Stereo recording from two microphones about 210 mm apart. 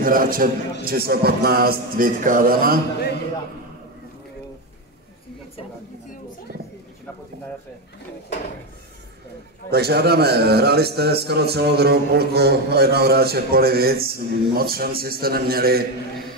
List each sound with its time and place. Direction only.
0.0 s a man's voice: 40° right (ahead or behind)
9.7 s a man's voice: 50° right (ahead or behind)